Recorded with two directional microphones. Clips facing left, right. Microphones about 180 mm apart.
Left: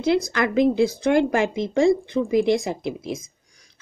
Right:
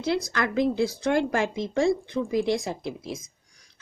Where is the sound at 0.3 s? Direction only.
15° left (ahead or behind).